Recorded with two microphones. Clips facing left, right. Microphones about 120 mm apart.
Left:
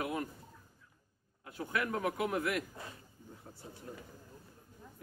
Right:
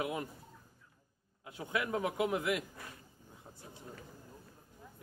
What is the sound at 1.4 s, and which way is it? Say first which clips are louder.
A man's voice: left 1 dB; 15° right (ahead or behind).